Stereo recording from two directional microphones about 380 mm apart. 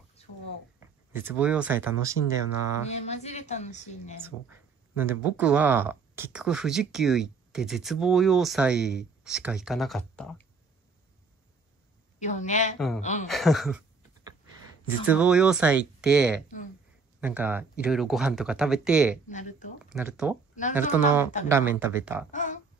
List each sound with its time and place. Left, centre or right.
0.2 s a sound: centre
1.1 s speech: centre
2.9 s a woman's voice: centre
4.2 s speech: centre
12.2 s a woman's voice: centre
12.7 s speech: centre
13.0 s a woman's voice: centre
13.3 s speech: centre
14.9 s speech: centre
19.2 s a woman's voice: centre
19.9 s speech: centre
22.3 s a woman's voice: centre